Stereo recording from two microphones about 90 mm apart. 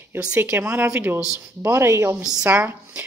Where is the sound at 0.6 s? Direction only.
15° right (ahead or behind); by 2.2 s 30° right (ahead or behind).